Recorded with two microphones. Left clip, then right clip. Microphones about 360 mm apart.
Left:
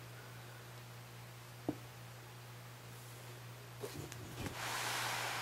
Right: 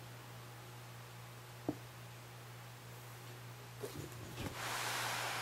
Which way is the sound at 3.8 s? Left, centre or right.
Centre.